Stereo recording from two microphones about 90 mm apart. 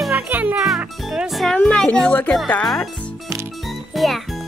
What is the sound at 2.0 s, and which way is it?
Speech, 20° left (ahead or behind).